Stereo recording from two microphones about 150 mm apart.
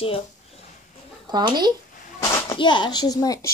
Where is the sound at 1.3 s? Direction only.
30° right (ahead or behind).